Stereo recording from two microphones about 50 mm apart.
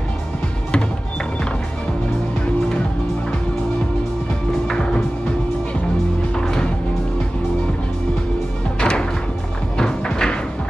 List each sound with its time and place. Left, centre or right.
4.6 s music: centre
8.7 s music: centre